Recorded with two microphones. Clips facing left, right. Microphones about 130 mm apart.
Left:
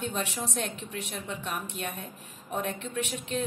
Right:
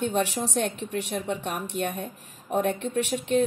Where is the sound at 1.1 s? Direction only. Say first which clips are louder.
Right 6 dB; 45° right (ahead or behind).